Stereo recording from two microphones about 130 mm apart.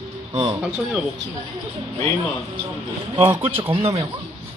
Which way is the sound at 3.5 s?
50° right (ahead or behind).